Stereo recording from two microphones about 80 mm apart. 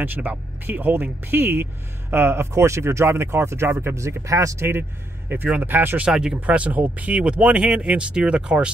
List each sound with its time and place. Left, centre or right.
0.0 s speech: right
5.3 s speech: right
6.0 s speech: centre